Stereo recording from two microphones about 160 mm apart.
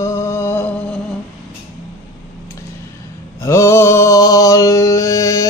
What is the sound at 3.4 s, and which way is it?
Mantra, 20° left (ahead or behind).